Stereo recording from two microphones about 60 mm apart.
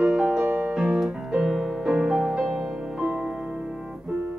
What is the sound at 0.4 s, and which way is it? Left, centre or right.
Music, right.